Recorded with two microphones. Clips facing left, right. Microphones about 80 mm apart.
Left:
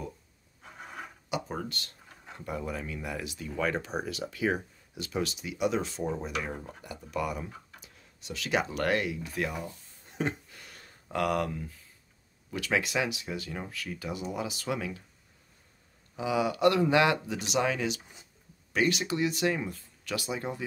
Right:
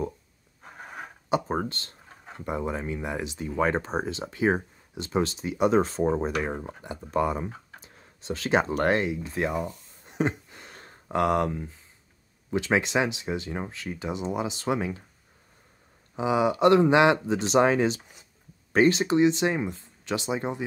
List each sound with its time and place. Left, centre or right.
1.3 s speech: right
16.2 s speech: right